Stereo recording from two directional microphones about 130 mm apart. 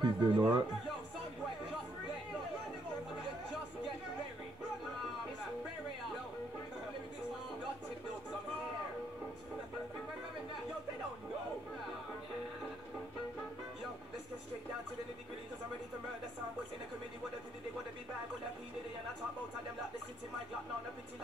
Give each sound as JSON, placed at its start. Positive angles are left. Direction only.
{"t": 0.0, "sound": "a man's voice", "side_deg": -30}